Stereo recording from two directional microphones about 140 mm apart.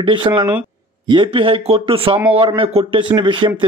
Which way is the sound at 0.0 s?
35° right (ahead or behind).